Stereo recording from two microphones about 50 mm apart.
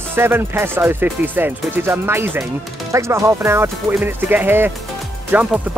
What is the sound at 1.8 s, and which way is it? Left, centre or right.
Speech, right.